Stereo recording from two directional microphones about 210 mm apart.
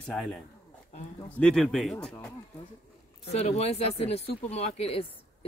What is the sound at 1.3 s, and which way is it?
Speech, 5° left (ahead or behind).